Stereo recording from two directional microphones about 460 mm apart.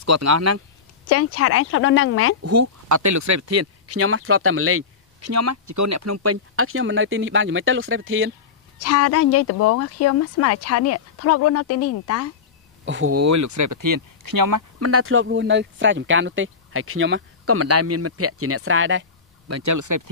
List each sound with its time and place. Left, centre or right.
0.0 s speech: right
1.0 s a woman's voice: left
2.4 s speech: right
8.7 s speech: left
12.8 s speech: right
14.8 s speech: right